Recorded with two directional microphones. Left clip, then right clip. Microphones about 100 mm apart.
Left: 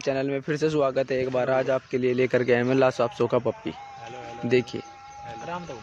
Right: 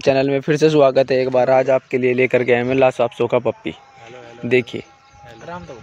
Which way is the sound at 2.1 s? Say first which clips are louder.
Right 7 dB; 25° right (ahead or behind).